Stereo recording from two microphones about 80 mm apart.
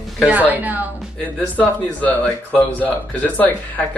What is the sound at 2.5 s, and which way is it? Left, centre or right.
Speech, left.